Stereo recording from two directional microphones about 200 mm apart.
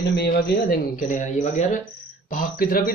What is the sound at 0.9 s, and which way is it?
A man's voice, 40° left (ahead or behind).